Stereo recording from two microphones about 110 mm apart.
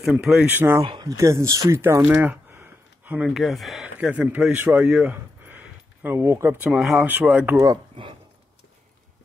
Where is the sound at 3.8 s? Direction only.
15° right (ahead or behind).